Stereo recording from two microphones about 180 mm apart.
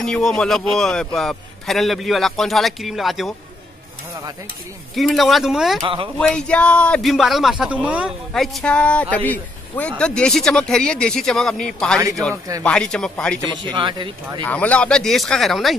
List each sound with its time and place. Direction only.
0.0 s a man's voice: 5° left (ahead or behind)
4.9 s a man's voice: centre (ahead or behind)
13.7 s speech: 25° right (ahead or behind)
14.4 s a man's voice: 10° left (ahead or behind)